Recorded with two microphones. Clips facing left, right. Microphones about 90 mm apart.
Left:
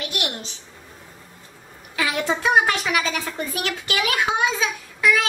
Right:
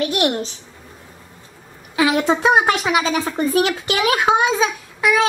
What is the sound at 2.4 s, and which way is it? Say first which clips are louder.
A child's voice: right 1 dB; 30° right (ahead or behind).